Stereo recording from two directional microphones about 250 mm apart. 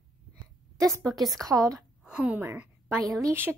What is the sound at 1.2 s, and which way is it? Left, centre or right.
A woman's voice, centre.